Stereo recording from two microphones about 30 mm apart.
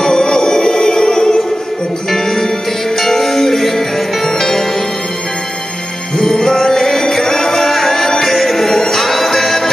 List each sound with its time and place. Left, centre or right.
0.0 s music: left
2.0 s music: centre
6.3 s music: centre